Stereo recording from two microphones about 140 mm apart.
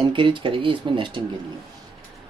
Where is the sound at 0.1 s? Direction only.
35° right (ahead or behind).